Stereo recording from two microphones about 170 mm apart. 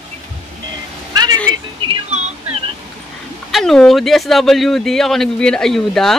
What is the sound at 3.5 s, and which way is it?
Speech, 5° left (ahead or behind).